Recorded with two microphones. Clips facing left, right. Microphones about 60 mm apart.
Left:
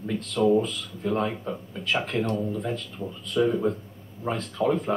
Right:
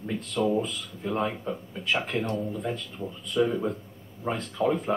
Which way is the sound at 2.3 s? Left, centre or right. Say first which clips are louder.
Left 2 dB; centre.